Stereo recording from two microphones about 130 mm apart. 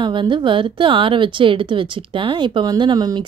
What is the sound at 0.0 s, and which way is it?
A woman's voice, 40° right (ahead or behind).